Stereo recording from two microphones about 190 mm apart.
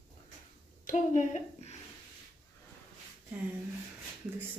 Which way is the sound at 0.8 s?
40° left (ahead or behind).